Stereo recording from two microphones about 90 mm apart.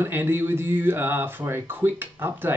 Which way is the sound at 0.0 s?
25° right (ahead or behind).